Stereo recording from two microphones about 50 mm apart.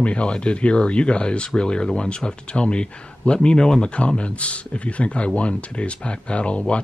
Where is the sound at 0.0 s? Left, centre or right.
Left.